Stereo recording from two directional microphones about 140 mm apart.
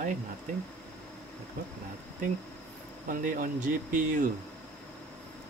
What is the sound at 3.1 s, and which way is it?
Speech, 75° right (ahead or behind).